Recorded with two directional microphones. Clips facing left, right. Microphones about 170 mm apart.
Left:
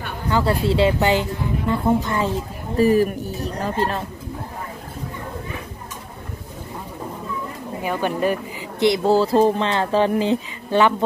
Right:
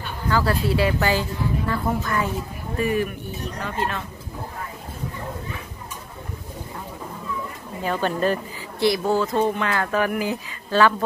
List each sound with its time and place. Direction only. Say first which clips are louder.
0.3 s speech: left 2 dB; 25° left (ahead or behind)
2.8 s speech: left 7 dB; 35° left (ahead or behind)
7.8 s speech: left 1 dB; 15° left (ahead or behind)